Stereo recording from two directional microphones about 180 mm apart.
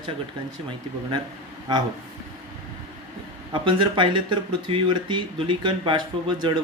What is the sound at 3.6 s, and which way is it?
Speech, 25° right (ahead or behind).